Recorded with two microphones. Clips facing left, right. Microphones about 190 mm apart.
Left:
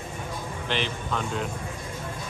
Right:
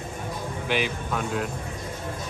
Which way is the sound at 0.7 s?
10° right (ahead or behind).